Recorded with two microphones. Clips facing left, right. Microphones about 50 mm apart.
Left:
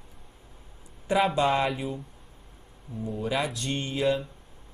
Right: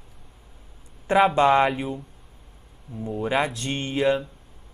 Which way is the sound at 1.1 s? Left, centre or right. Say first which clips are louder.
Right 5 dB; right.